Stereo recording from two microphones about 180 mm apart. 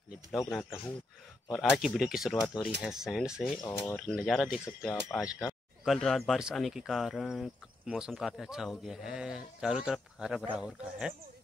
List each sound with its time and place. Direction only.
0.5 s speech: 5° left (ahead or behind)